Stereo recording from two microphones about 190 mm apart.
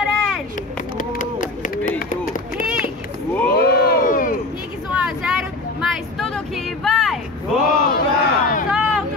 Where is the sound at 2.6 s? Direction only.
5° right (ahead or behind).